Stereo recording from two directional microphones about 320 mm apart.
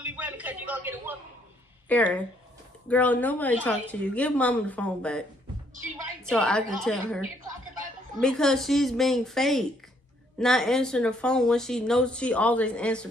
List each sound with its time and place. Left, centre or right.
0.0 s a sound: centre
1.9 s speech: centre
6.2 s speech: centre
8.2 s speech: centre